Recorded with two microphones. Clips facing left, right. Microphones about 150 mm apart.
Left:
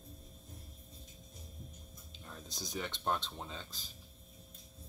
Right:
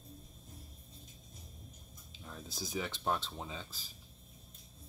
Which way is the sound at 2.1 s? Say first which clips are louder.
Right 2 dB; centre (ahead or behind).